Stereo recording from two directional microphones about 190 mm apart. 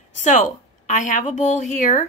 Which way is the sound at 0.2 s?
40° left (ahead or behind).